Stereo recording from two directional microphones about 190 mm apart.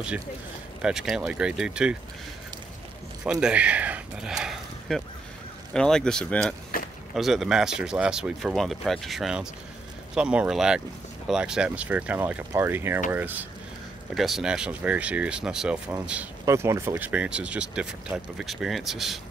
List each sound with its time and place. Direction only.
0.8 s speech: 5° right (ahead or behind)
3.3 s speech: 5° right (ahead or behind)
6.7 s a sound: 50° left (ahead or behind)
7.2 s speech: centre (ahead or behind)